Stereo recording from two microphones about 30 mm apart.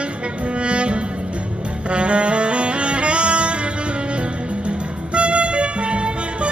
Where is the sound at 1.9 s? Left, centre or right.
Right.